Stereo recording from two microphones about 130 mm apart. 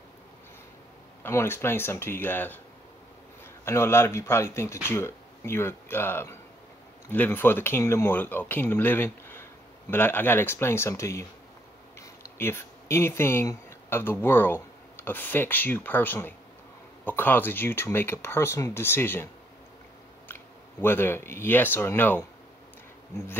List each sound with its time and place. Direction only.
1.2 s speech: 20° left (ahead or behind)
3.6 s speech: 20° left (ahead or behind)
20.8 s speech: 15° left (ahead or behind)